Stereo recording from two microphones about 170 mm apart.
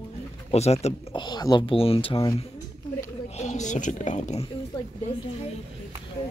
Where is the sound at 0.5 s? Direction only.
40° left (ahead or behind).